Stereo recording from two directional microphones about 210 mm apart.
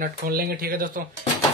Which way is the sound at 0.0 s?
45° right (ahead or behind).